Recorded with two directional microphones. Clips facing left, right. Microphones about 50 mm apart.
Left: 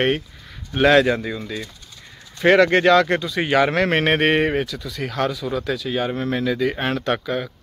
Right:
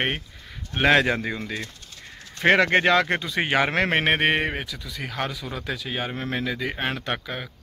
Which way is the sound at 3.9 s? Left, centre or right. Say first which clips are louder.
Left 3 dB; centre.